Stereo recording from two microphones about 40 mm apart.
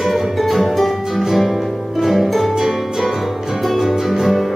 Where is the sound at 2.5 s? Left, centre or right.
Centre.